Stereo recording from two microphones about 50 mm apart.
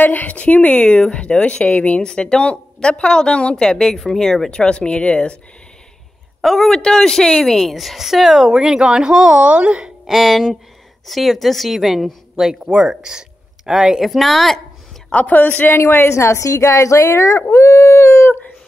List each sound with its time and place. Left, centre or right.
0.0 s a woman's voice: left; by 4.5 s centre
4.5 s a woman's voice: centre
6.4 s a woman's voice: centre
7.5 s a woman's voice: centre
8.5 s a woman's voice: centre
10.0 s a woman's voice: centre
15.2 s speech: left
15.7 s a woman's voice: left
16.1 s a woman's voice: left
17.5 s howl: left